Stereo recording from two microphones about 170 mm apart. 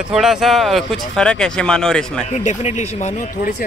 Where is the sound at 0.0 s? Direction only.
5° right (ahead or behind).